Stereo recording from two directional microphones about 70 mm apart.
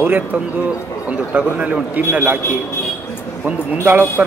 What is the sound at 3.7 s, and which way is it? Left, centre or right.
Speech, right.